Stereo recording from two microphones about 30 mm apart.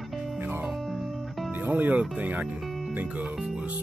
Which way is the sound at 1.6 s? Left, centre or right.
Right.